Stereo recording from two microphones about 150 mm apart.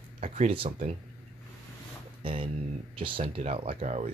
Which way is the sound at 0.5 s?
35° right (ahead or behind).